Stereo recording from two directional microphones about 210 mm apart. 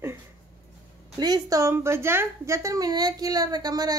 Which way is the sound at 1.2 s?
15° right (ahead or behind).